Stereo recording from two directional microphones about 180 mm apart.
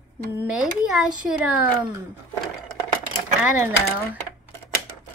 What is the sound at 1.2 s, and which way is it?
Speech, 5° right (ahead or behind).